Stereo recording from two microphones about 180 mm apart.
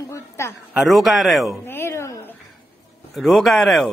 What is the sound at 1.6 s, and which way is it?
Speech, 15° left (ahead or behind).